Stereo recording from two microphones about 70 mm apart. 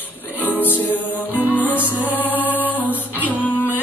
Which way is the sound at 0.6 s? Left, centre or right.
Left.